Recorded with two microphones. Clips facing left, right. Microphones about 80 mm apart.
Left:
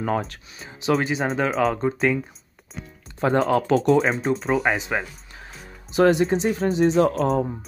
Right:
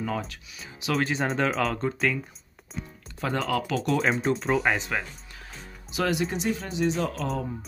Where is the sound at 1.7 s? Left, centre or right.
Centre.